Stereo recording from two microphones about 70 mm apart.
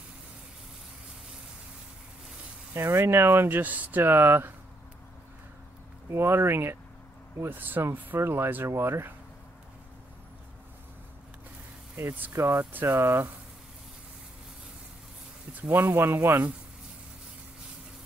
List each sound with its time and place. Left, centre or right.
2.7 s speech: right
6.0 s speech: right
12.0 s speech: right
15.7 s speech: right